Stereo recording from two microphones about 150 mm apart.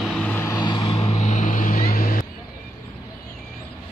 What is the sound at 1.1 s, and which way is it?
Vehicle, 55° left (ahead or behind).